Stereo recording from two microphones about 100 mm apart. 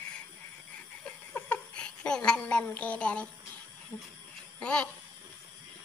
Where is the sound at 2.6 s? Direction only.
15° left (ahead or behind).